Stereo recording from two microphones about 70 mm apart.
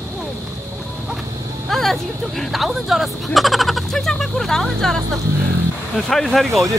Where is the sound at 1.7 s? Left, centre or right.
Centre.